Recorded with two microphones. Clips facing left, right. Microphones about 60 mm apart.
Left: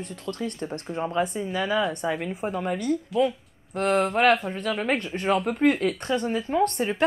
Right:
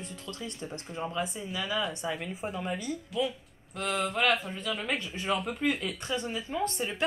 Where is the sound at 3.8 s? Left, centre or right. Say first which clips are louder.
Left 8 dB; left.